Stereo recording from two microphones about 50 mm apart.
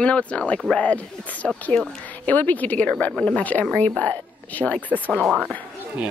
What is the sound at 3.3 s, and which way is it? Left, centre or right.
A woman's voice, left.